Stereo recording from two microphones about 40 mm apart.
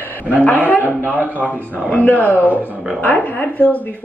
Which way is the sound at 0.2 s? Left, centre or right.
Left.